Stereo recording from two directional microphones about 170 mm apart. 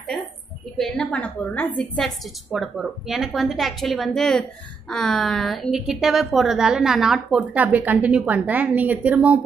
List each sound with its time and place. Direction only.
0.7 s a woman's voice: 5° left (ahead or behind)